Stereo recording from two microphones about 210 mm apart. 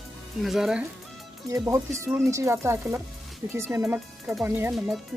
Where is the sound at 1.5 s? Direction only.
15° right (ahead or behind).